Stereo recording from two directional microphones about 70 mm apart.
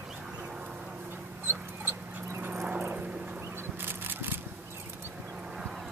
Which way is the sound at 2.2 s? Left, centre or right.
Right.